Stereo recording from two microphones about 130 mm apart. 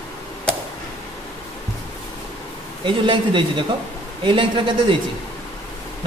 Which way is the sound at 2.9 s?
40° right (ahead or behind).